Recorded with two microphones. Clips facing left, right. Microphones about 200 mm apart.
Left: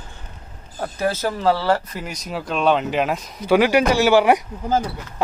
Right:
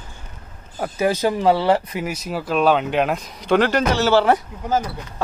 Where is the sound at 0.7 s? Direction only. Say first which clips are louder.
Right 3 dB; 10° right (ahead or behind).